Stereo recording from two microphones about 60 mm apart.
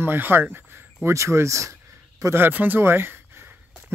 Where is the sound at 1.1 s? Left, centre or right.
Right.